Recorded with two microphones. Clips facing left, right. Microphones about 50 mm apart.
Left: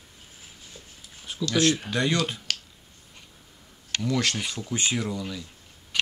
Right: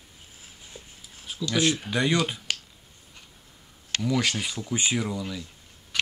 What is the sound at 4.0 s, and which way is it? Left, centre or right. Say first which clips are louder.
Speech: right 1 dB; centre.